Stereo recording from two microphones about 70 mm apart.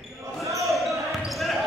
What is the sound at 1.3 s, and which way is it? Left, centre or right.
Basketball bounce, centre.